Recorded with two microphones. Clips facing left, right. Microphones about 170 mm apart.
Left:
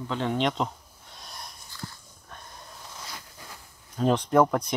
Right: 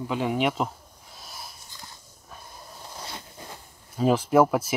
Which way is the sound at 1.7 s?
20° right (ahead or behind).